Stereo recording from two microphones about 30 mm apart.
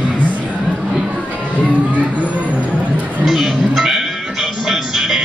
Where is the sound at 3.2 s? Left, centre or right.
Centre.